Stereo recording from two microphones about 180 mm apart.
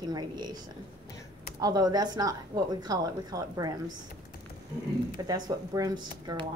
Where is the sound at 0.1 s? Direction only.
25° right (ahead or behind).